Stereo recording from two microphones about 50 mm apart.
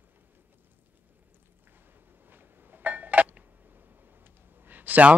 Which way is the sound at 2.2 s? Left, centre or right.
Right.